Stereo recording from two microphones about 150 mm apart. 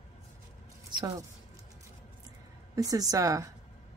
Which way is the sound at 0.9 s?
30° right (ahead or behind).